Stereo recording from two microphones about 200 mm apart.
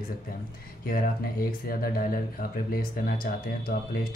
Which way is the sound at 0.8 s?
45° left (ahead or behind).